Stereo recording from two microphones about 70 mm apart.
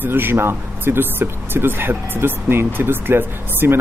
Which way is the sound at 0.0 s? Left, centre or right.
Right.